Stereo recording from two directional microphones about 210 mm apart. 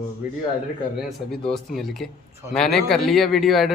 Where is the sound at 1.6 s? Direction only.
Centre (ahead or behind).